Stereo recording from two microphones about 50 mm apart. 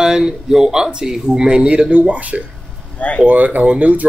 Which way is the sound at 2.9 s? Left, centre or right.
Left.